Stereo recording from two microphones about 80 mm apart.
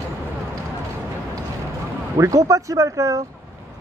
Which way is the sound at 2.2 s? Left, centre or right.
Right.